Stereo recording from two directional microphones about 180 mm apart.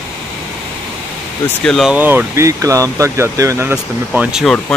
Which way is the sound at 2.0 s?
10° right (ahead or behind).